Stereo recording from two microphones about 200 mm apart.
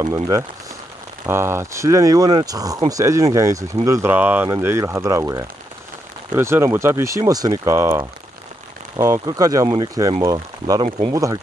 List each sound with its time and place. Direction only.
1.2 s speech: 10° right (ahead or behind)